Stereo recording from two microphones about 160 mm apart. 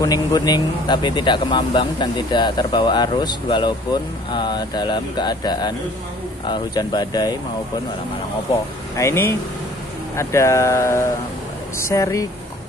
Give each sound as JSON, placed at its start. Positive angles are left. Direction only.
{"t": 0.0, "sound": "speech", "side_deg": 25}
{"t": 8.9, "sound": "speech", "side_deg": 15}